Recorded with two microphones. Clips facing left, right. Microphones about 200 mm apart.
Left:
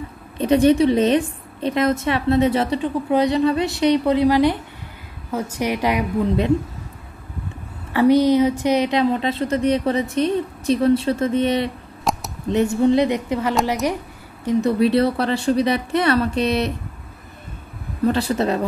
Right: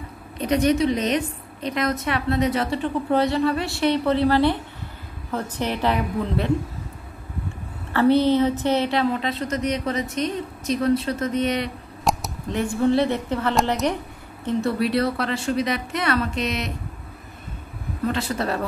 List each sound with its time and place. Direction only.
0.4 s speech: 25° left (ahead or behind)
2.8 s a woman's voice: 15° left (ahead or behind)
7.9 s speech: 10° left (ahead or behind)
12.0 s a sound: centre (ahead or behind)
12.5 s a woman's voice: 20° left (ahead or behind)
18.0 s a woman's voice: 35° left (ahead or behind)